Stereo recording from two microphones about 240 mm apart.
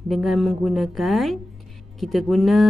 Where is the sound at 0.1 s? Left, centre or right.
Centre.